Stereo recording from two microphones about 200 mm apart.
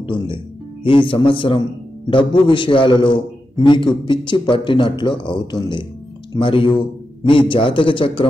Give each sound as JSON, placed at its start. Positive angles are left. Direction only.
{"t": 0.0, "sound": "a man's voice", "side_deg": 25}